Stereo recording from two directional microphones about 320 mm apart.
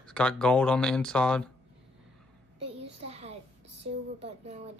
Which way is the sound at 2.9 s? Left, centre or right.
Centre.